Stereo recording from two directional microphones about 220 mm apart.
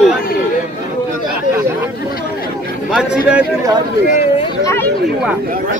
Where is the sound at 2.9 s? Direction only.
5° right (ahead or behind).